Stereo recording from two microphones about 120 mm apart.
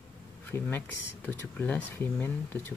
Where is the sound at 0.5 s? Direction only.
20° left (ahead or behind).